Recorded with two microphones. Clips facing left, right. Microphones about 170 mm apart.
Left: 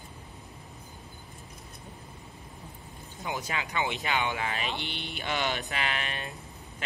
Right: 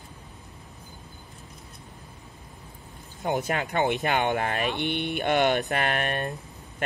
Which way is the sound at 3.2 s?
60° right (ahead or behind).